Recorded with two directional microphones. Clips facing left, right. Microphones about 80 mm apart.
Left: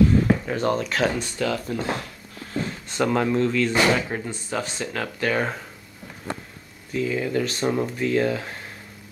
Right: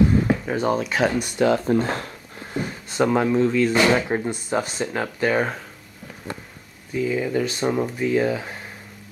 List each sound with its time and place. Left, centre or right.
0.3 s speech: centre
1.4 s speech: right
2.5 s speech: centre
6.9 s speech: centre